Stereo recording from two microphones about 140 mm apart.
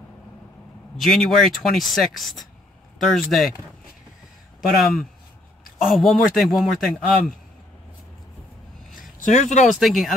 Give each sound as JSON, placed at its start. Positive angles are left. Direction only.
{"t": 0.9, "sound": "speech", "side_deg": 0}
{"t": 4.6, "sound": "speech", "side_deg": 0}
{"t": 9.2, "sound": "speech", "side_deg": 60}
{"t": 9.7, "sound": "speech", "side_deg": 0}